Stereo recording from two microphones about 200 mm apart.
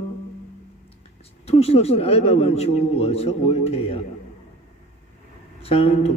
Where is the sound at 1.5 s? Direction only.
30° left (ahead or behind).